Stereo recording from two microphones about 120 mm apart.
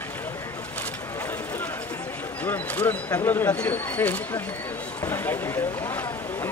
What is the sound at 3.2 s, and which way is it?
Speech, 20° left (ahead or behind).